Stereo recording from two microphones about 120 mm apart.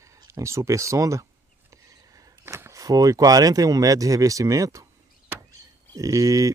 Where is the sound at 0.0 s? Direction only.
25° right (ahead or behind).